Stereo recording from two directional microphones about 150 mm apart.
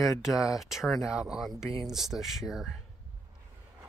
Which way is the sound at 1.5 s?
20° left (ahead or behind).